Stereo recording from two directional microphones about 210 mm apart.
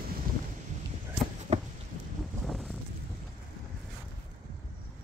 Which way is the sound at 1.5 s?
30° right (ahead or behind).